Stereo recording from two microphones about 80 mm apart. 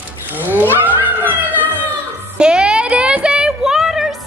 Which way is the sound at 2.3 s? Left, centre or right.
Centre.